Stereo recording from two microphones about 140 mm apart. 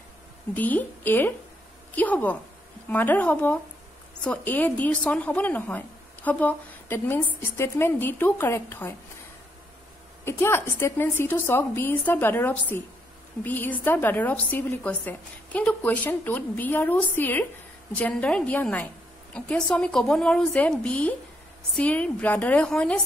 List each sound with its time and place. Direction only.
0.6 s a woman's voice: 10° left (ahead or behind)
10.2 s a woman's voice: 15° left (ahead or behind)